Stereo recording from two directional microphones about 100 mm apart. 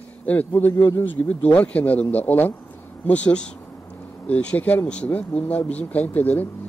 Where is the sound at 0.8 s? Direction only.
30° left (ahead or behind).